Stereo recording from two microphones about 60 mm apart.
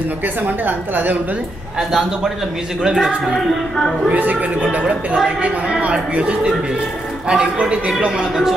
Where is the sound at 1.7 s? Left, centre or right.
Centre.